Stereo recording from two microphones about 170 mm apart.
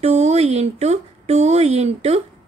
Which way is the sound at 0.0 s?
40° right (ahead or behind).